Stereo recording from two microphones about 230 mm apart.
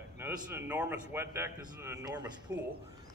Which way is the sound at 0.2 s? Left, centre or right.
Centre.